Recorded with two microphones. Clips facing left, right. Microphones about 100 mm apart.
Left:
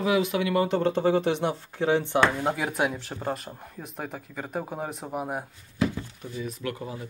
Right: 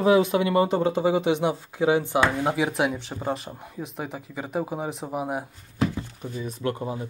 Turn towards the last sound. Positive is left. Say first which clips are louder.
# right 5 dB
turn(degrees=-30)  # may be behind; listen again after turning